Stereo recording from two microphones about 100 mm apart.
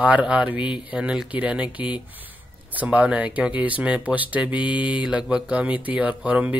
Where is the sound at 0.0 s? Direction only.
10° right (ahead or behind).